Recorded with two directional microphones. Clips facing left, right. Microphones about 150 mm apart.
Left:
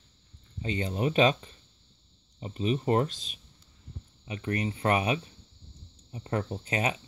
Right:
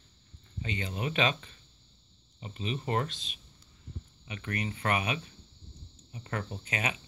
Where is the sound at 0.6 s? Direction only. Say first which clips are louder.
Left 6 dB; 35° left (ahead or behind).